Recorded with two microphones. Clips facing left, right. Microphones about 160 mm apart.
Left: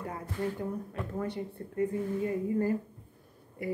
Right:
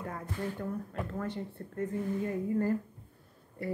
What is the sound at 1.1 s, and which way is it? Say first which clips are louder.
Speech: left 5 dB; 15° left (ahead or behind).